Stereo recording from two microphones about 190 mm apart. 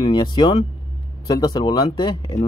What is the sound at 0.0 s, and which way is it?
Speech, 25° left (ahead or behind).